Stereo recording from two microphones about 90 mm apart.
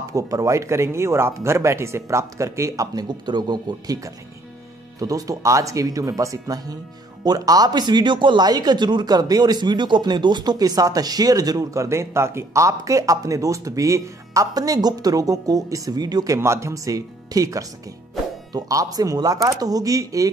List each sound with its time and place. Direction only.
0.1 s speech: 40° right (ahead or behind)
16.3 s speech: 30° right (ahead or behind)